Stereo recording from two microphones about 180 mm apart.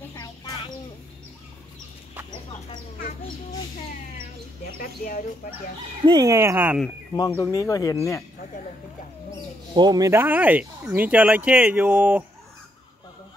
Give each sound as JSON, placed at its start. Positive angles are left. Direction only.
{"t": 4.7, "sound": "speech", "side_deg": 50}
{"t": 6.0, "sound": "speech", "side_deg": -20}
{"t": 7.3, "sound": "speech", "side_deg": 20}
{"t": 9.8, "sound": "speech", "side_deg": -20}